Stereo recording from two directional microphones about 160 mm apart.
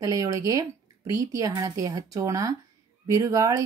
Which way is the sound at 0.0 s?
20° right (ahead or behind).